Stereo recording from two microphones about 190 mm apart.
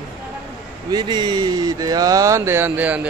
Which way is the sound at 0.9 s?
25° right (ahead or behind).